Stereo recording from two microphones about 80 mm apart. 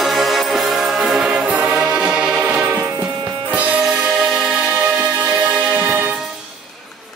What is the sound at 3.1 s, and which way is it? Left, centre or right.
Music, right.